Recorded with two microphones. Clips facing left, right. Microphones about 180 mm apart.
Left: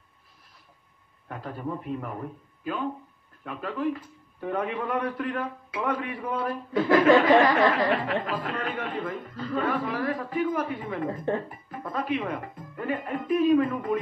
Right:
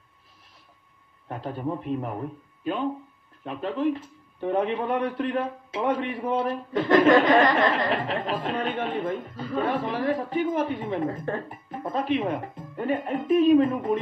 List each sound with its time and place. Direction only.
1.3 s a man's voice: 25° right (ahead or behind)
6.7 s speech: 5° left (ahead or behind)
7.9 s a man's voice: 25° right (ahead or behind)